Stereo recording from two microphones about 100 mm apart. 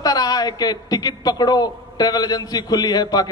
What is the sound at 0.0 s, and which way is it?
A man's voice, 40° left (ahead or behind).